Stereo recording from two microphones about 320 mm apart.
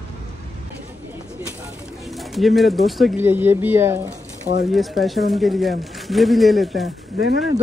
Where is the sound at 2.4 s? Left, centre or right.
Centre.